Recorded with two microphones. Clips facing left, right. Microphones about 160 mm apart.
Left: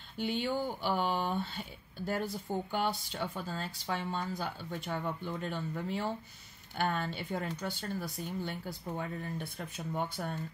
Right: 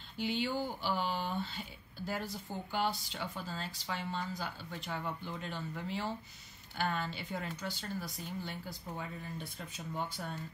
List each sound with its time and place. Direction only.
0.2 s speech: 55° left (ahead or behind)